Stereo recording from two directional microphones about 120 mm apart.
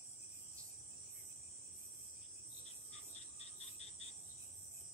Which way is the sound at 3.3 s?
60° left (ahead or behind).